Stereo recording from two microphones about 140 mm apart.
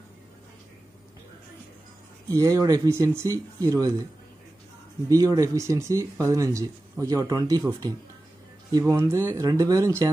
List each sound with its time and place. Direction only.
2.2 s speech: 25° right (ahead or behind)
5.1 s speech: 25° right (ahead or behind)